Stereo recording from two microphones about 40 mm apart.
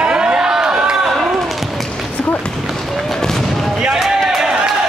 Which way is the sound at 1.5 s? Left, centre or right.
Centre.